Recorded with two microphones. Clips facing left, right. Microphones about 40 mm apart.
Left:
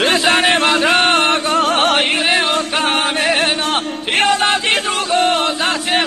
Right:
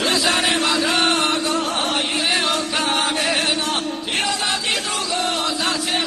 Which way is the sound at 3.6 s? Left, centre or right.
Left.